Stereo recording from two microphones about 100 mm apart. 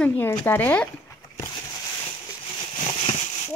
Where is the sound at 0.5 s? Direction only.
20° left (ahead or behind).